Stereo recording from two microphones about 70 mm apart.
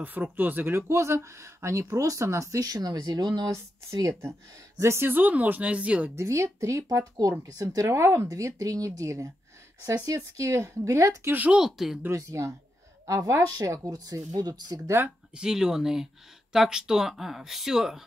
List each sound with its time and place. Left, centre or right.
0.0 s speech: right
3.4 s speech: right
4.1 s speech: right; by 6.1 s centre
6.1 s speech: right
11.5 s speech: centre
12.1 s speech: right
13.0 s a woman's voice: right
15.3 s speech: centre